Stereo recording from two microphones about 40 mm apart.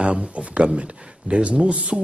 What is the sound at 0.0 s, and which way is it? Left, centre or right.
Speech, right.